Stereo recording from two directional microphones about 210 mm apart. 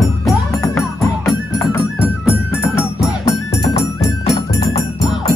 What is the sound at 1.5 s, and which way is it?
Music, centre (ahead or behind).